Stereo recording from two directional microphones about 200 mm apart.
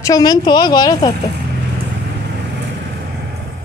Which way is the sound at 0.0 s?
20° left (ahead or behind).